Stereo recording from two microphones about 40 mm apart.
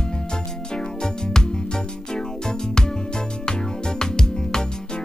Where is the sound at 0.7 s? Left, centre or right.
Centre.